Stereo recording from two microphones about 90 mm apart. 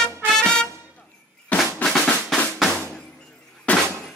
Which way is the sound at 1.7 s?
5° left (ahead or behind).